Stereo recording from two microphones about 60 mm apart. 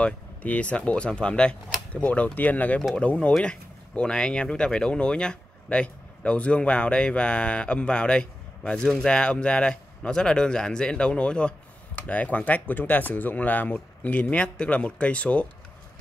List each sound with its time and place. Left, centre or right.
0.0 s speech: left
11.9 s speech: left